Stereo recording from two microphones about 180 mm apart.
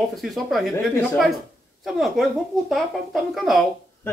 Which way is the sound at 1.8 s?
Centre (ahead or behind).